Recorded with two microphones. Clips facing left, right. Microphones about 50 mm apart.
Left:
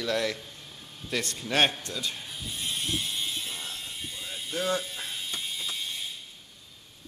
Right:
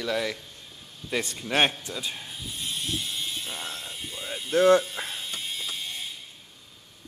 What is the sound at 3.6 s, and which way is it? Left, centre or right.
Mechanisms, right.